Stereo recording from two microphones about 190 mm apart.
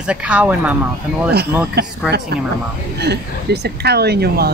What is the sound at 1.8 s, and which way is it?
Speech, 60° right (ahead or behind).